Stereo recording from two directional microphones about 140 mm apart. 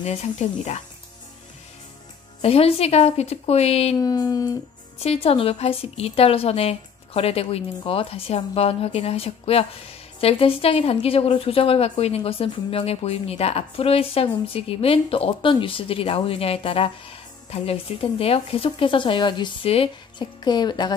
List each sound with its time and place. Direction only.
0.0 s a woman's voice: 50° left (ahead or behind)
2.4 s a woman's voice: 45° left (ahead or behind)
4.0 s speech: 25° left (ahead or behind)
4.9 s a woman's voice: 45° left (ahead or behind); by 20.9 s 30° left (ahead or behind)